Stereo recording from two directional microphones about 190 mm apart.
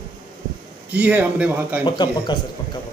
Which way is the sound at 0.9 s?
10° right (ahead or behind).